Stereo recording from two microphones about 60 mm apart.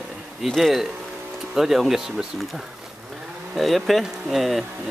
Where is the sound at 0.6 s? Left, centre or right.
Centre.